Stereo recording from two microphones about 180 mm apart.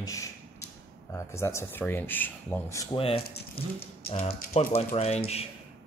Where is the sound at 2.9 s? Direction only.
30° left (ahead or behind).